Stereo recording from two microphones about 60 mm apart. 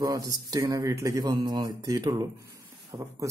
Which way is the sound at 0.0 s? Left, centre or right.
Right.